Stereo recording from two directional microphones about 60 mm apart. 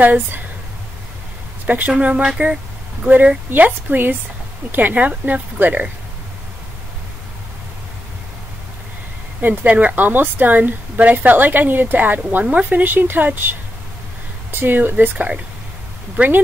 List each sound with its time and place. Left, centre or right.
0.0 s speech: right
1.7 s speech: right
3.1 s a woman's voice: right
9.4 s a woman's voice: right